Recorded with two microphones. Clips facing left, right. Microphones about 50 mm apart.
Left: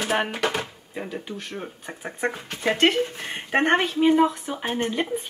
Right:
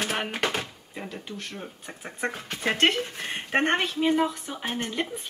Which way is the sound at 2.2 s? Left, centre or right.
Left.